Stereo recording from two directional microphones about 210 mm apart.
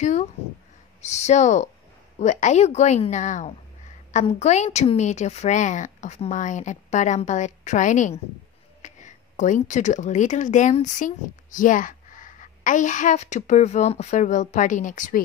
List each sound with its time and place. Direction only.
1.0 s a woman's voice: 30° left (ahead or behind)